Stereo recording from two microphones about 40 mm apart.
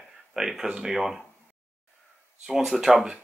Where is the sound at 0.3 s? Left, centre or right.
Centre.